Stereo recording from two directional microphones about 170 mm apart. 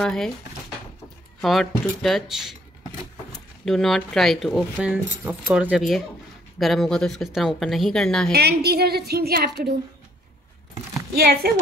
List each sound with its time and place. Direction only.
0.0 s a woman's voice: 5° left (ahead or behind)
1.4 s a woman's voice: centre (ahead or behind)
3.6 s a woman's voice: centre (ahead or behind)
8.3 s a woman's voice: 70° right (ahead or behind)
11.1 s a woman's voice: 70° right (ahead or behind)